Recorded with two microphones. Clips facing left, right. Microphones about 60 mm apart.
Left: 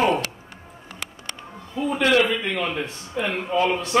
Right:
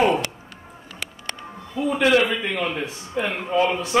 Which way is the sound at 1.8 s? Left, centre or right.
Centre.